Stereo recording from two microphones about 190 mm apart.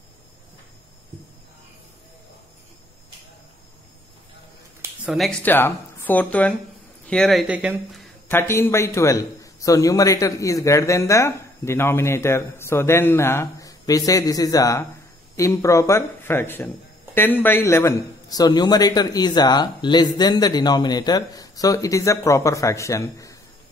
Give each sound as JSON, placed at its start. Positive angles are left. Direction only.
{"t": 5.0, "sound": "speech", "side_deg": 0}
{"t": 8.3, "sound": "speech", "side_deg": 15}